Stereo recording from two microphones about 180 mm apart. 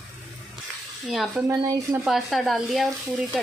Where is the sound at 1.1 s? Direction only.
Centre (ahead or behind).